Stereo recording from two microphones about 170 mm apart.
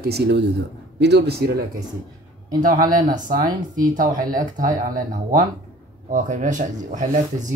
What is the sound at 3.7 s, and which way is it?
Speech, 50° right (ahead or behind).